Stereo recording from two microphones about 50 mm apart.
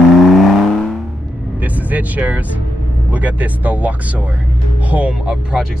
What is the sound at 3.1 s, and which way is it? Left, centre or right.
Speech, right.